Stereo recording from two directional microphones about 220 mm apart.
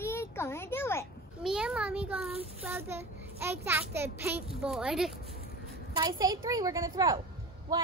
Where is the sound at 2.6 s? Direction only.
10° right (ahead or behind).